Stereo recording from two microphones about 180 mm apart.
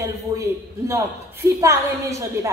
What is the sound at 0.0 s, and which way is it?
A man's voice, 15° right (ahead or behind).